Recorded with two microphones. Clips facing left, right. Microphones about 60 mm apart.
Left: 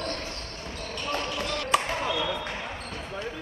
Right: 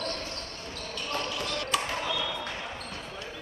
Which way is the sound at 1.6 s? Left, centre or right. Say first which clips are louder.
Left 6 dB; left.